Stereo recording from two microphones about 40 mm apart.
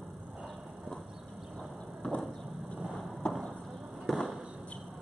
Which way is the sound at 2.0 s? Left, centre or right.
Centre.